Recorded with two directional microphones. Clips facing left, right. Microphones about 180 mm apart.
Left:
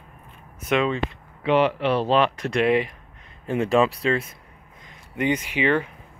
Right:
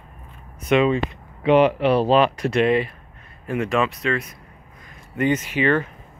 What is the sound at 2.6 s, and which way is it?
Speech, 15° left (ahead or behind).